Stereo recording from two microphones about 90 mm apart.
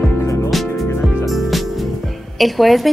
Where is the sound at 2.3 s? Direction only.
Centre (ahead or behind).